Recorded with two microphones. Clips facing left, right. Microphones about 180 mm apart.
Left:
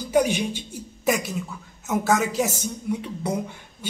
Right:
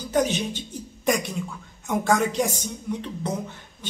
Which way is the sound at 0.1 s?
10° left (ahead or behind).